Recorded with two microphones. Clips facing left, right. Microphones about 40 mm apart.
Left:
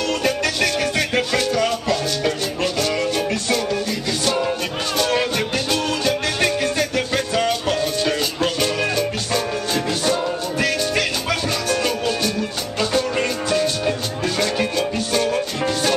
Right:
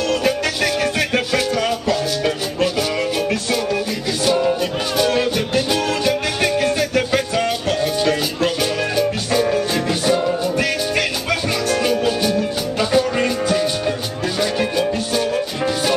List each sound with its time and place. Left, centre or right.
0.1 s music: centre